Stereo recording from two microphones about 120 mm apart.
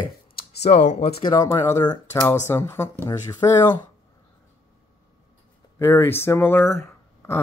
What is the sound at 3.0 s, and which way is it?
Speech, 35° left (ahead or behind).